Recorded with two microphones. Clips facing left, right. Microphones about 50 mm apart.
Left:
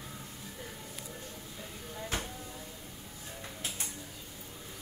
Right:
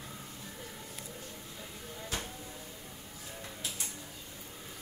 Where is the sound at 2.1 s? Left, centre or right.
Left.